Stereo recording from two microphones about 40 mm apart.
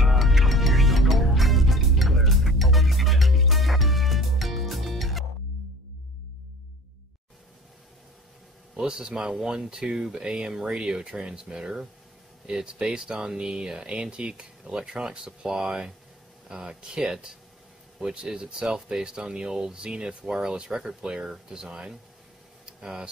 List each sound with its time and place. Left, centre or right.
0.0 s music: centre
8.7 s speech: centre
22.7 s a sound: centre